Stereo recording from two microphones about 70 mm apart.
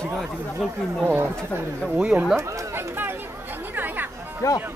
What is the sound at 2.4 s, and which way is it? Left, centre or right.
Speech, right.